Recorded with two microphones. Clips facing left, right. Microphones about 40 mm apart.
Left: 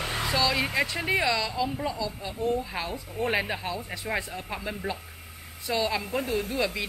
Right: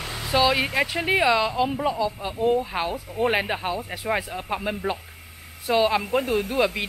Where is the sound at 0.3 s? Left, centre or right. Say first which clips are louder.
Right 6 dB; right.